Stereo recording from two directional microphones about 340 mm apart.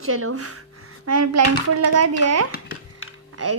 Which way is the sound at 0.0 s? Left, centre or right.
Right.